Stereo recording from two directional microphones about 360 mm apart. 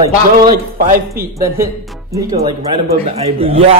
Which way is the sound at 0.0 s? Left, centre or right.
Right.